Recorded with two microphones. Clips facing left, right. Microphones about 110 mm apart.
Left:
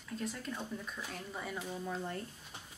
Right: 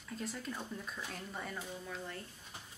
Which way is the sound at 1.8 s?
35° left (ahead or behind).